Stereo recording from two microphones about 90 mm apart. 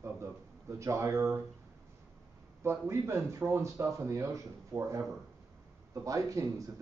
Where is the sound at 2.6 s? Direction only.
30° right (ahead or behind).